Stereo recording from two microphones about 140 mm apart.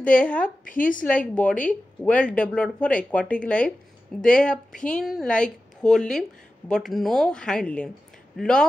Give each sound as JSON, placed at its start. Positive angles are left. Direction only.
{"t": 0.0, "sound": "a woman's voice", "side_deg": 10}
{"t": 0.4, "sound": "a woman's voice", "side_deg": 75}
{"t": 1.0, "sound": "a woman's voice", "side_deg": 10}